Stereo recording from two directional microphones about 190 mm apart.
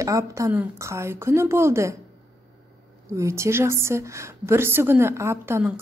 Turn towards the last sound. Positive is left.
turn(degrees=-15)  # may be behind; listen again after turning